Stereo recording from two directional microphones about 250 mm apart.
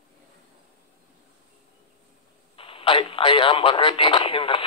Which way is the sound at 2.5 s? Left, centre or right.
Left.